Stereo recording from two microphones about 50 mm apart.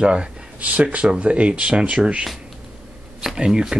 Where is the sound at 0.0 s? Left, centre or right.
Right.